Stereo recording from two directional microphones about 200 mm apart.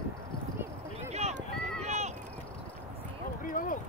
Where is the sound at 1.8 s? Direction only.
35° right (ahead or behind).